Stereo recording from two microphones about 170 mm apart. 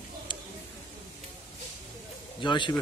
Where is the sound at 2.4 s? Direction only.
30° left (ahead or behind).